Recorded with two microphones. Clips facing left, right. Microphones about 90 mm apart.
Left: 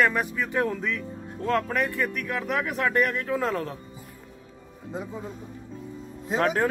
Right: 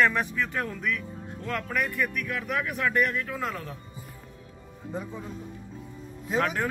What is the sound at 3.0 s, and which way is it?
Speech, 40° left (ahead or behind).